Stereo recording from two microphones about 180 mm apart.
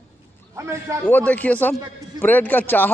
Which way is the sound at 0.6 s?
15° right (ahead or behind).